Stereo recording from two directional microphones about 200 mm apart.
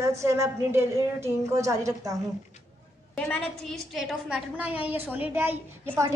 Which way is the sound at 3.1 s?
5° left (ahead or behind).